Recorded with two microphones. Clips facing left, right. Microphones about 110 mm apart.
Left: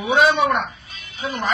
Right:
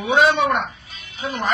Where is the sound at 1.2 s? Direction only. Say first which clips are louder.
Even; centre (ahead or behind).